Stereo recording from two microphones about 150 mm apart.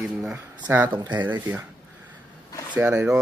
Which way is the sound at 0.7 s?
10° right (ahead or behind).